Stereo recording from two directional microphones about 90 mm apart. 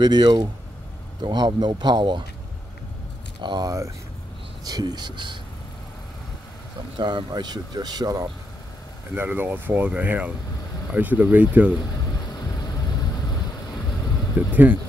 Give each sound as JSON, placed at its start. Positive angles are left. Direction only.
{"t": 0.0, "sound": "speech", "side_deg": -55}
{"t": 3.4, "sound": "speech", "side_deg": -55}
{"t": 7.0, "sound": "speech", "side_deg": -55}
{"t": 9.1, "sound": "speech", "side_deg": -20}
{"t": 14.5, "sound": "speech", "side_deg": -20}